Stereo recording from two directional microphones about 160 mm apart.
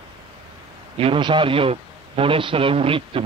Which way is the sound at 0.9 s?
35° right (ahead or behind).